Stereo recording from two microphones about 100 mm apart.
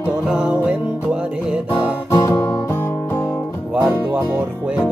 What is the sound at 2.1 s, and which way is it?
Music, 30° left (ahead or behind).